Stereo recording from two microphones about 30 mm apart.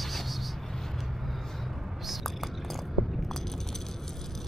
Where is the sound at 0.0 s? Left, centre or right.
Centre.